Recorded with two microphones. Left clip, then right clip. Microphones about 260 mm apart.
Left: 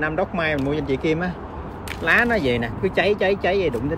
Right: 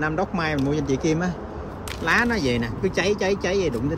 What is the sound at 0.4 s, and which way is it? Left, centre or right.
Speech, centre.